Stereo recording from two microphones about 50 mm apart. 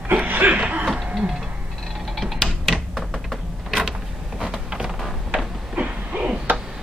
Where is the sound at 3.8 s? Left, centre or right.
Centre.